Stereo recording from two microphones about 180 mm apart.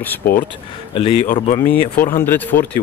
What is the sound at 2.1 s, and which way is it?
Speech, 10° left (ahead or behind).